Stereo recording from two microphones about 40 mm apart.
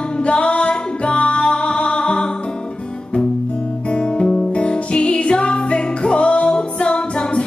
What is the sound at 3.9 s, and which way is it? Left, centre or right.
Music, left.